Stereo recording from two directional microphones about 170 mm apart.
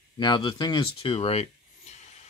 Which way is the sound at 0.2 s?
30° left (ahead or behind).